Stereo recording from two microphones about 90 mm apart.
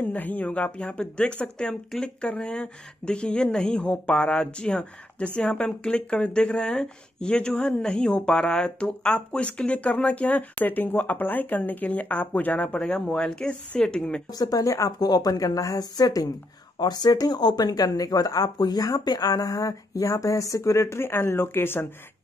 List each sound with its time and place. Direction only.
0.0 s speech: 20° left (ahead or behind)
14.4 s speech: 40° left (ahead or behind)